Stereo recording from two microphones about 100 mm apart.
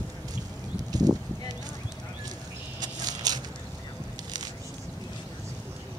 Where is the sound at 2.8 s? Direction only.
40° right (ahead or behind).